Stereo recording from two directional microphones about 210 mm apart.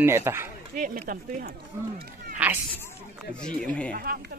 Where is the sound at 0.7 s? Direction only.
40° right (ahead or behind).